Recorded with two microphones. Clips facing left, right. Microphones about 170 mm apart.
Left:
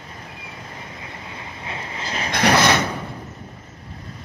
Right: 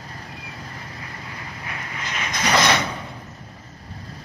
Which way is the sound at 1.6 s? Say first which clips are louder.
Left 3 dB; 25° left (ahead or behind).